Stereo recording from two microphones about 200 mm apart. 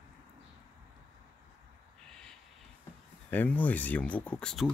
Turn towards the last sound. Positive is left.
turn(degrees=5)  # may be behind; listen again after turning